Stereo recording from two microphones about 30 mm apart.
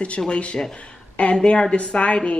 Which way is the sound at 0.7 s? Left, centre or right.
Left.